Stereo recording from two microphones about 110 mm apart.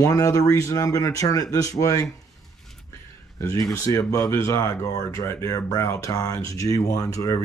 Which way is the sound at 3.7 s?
30° left (ahead or behind).